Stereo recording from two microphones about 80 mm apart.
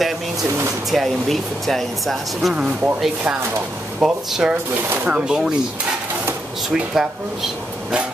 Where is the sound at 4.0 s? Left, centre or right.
Centre.